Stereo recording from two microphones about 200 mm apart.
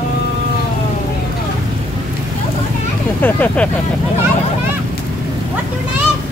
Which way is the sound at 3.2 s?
10° left (ahead or behind).